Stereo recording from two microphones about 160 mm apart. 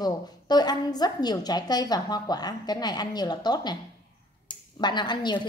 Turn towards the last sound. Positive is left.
turn(degrees=30)  # may be behind; listen again after turning